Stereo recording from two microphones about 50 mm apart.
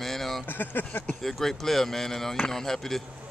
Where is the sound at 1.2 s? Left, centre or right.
Centre.